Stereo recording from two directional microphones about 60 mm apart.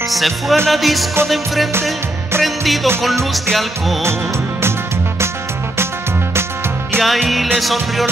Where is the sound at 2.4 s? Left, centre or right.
Centre.